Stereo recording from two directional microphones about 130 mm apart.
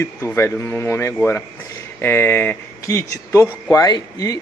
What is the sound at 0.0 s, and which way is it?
Speech, 20° left (ahead or behind).